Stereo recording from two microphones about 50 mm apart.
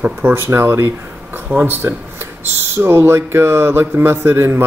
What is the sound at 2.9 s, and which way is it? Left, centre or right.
A man's voice, right.